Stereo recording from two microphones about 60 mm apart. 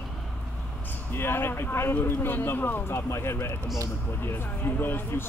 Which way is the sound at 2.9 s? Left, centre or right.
Left.